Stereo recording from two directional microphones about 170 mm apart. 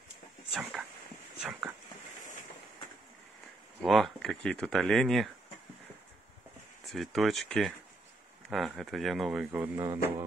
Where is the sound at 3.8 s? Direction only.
Centre (ahead or behind).